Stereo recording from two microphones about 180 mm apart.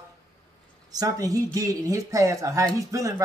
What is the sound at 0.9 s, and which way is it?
Speech, 20° right (ahead or behind).